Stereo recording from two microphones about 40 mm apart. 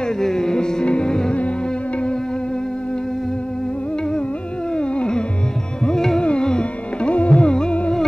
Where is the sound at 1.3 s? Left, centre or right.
Left.